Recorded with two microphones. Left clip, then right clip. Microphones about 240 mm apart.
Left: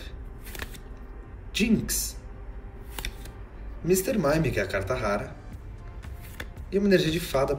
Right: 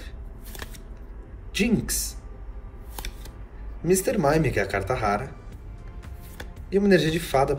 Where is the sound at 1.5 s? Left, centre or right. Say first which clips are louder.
Right 1 dB; centre.